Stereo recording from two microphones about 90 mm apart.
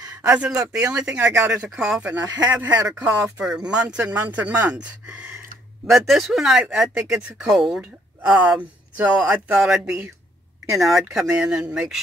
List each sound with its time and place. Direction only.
0.5 s speech: 10° right (ahead or behind)